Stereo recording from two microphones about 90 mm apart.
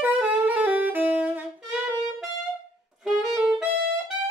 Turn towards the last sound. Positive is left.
turn(degrees=-10)  # may be behind; listen again after turning